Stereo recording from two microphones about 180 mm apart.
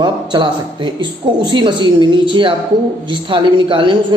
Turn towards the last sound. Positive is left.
turn(degrees=-25)  # may be behind; listen again after turning